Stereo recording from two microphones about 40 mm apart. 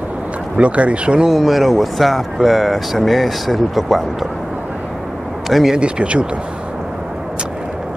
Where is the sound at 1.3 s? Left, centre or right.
Centre.